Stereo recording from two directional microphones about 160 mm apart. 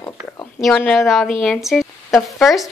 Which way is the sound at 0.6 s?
Centre (ahead or behind).